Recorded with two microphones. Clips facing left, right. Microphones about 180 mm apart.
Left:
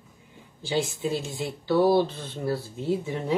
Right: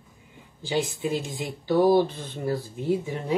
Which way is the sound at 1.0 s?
15° right (ahead or behind).